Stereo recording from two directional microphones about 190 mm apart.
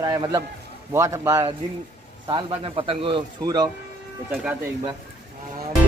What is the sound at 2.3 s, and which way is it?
Speech, 30° right (ahead or behind).